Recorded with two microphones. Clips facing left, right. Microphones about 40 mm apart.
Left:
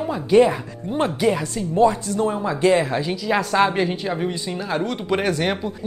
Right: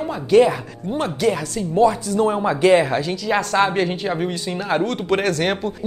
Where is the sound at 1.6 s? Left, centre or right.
Centre.